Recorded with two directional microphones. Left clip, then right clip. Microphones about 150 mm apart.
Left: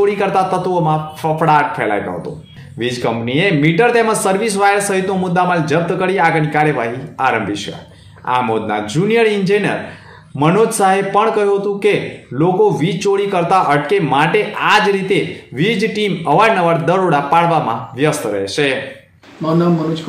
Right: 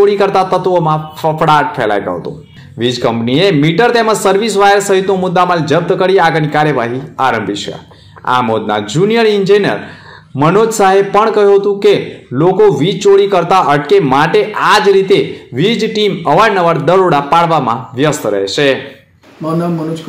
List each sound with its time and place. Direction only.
0.0 s a man's voice: 30° right (ahead or behind)